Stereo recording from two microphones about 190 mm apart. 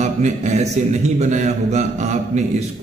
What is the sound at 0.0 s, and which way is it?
A man's voice, 35° right (ahead or behind).